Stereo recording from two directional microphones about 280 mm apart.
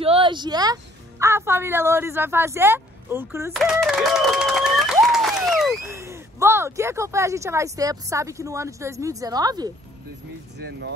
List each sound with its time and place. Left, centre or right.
0.0 s a sound: centre
1.2 s speech: centre
10.6 s speech: right